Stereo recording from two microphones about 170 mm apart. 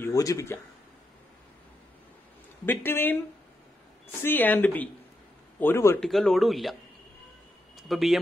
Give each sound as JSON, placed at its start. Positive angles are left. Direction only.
{"t": 0.0, "sound": "speech", "side_deg": 20}
{"t": 2.6, "sound": "speech", "side_deg": 10}
{"t": 4.2, "sound": "speech", "side_deg": 10}
{"t": 5.9, "sound": "speech", "side_deg": 0}